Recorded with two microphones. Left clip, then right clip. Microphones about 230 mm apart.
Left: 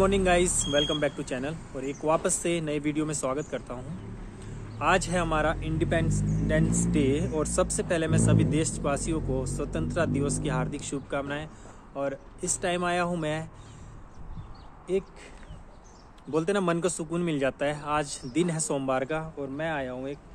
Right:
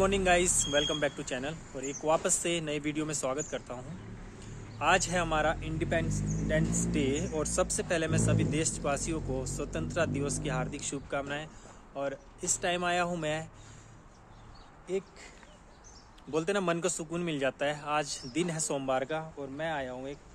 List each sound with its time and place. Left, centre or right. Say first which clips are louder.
0.0 s speech: left 3 dB; centre
16.3 s speech: left 4 dB; centre